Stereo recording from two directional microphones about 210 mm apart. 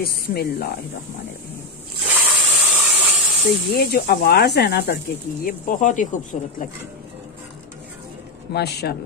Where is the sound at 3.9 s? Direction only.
50° left (ahead or behind).